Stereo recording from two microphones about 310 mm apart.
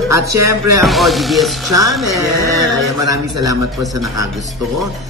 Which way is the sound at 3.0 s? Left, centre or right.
Centre.